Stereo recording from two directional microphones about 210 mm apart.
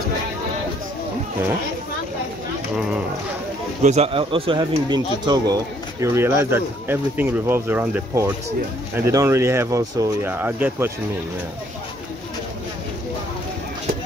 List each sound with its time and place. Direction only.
3.8 s speech: 30° right (ahead or behind); by 10.9 s 10° right (ahead or behind)